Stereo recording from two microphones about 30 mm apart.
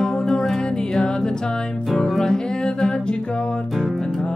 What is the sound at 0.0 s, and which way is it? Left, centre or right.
Music, centre.